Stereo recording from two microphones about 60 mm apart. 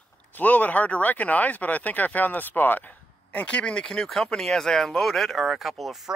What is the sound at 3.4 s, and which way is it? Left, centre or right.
Speech, centre.